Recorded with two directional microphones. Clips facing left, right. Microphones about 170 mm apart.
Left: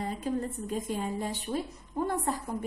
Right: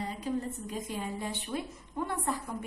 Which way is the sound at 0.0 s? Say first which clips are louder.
Left 2 dB; 45° left (ahead or behind).